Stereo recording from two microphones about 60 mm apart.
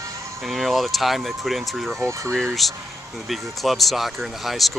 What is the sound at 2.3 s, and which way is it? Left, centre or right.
Speech, centre.